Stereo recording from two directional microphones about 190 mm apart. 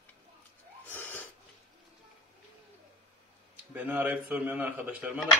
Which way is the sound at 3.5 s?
10° right (ahead or behind).